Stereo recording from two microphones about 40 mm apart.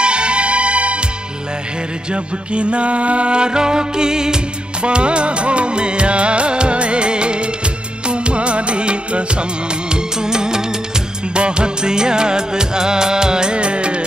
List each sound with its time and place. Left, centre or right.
0.0 s music: right
2.0 s music: right